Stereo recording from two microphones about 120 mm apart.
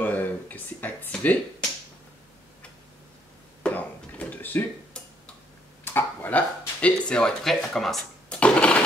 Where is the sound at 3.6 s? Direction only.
10° left (ahead or behind).